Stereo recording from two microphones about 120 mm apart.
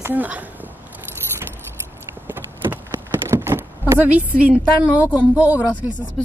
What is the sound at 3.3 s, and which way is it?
Door, 20° right (ahead or behind).